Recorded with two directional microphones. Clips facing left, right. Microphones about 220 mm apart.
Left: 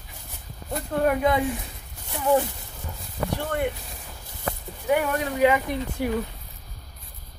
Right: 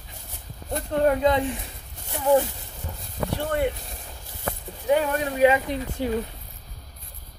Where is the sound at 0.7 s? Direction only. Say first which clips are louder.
Right 2 dB; 25° right (ahead or behind).